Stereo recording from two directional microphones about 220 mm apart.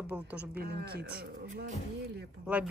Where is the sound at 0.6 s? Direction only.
45° right (ahead or behind).